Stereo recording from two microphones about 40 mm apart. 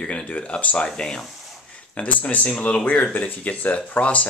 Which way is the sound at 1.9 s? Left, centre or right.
Left.